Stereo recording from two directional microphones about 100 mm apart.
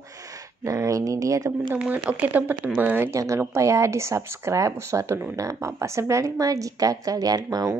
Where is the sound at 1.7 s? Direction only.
15° right (ahead or behind).